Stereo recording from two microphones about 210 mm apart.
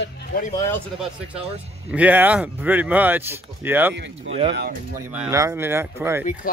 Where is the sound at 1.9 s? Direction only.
5° right (ahead or behind).